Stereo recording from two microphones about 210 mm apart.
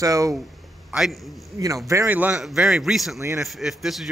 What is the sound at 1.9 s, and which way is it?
A man's voice, 10° right (ahead or behind).